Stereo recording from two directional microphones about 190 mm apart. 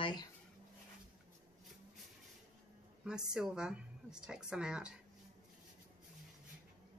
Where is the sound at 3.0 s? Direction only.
5° right (ahead or behind).